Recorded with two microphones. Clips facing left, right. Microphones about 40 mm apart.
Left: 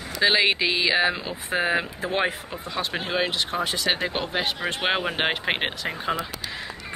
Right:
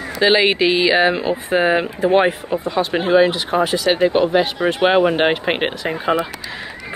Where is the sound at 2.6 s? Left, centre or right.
Centre.